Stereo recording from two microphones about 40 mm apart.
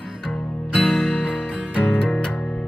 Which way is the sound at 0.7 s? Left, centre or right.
Left.